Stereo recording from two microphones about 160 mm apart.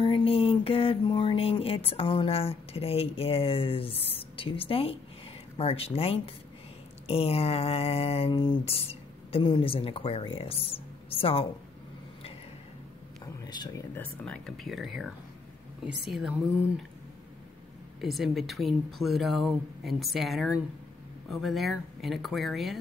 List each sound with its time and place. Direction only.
0.0 s speech: 35° left (ahead or behind)
13.2 s a sound: 25° left (ahead or behind)
13.9 s speech: 5° left (ahead or behind)
18.0 s speech: centre (ahead or behind)